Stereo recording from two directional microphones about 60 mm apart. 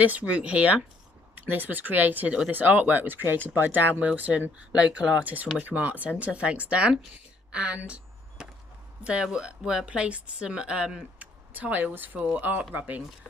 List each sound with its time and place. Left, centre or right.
0.0 s speech: right
7.5 s a sound: centre
9.0 s speech: centre
11.5 s speech: right